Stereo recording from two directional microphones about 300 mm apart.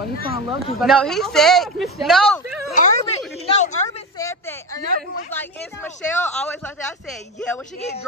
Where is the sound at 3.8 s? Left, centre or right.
Centre.